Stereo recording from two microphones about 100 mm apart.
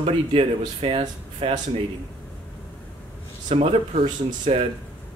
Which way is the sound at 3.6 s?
85° right.